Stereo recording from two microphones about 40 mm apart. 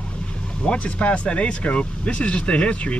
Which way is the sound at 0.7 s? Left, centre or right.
Left.